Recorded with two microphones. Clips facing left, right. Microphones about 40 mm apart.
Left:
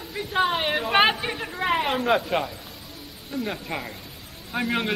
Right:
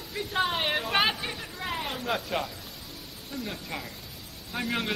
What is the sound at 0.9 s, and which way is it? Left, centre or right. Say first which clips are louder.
Chatter: left 9 dB; left.